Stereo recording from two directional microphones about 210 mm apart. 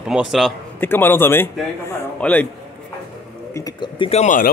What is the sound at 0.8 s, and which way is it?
A man's voice, 10° left (ahead or behind).